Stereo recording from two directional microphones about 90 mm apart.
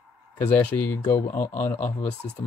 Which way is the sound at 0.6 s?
20° left (ahead or behind).